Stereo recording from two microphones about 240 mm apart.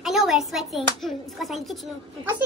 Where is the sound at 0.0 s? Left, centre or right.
Centre.